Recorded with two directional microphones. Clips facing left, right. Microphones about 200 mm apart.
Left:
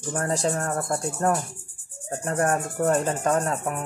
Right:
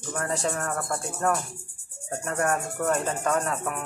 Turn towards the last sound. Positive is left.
turn(degrees=35)  # may be behind; listen again after turning